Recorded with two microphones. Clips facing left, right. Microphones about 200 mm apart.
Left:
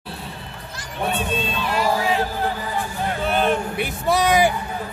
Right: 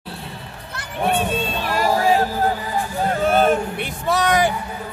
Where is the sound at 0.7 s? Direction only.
55° right (ahead or behind).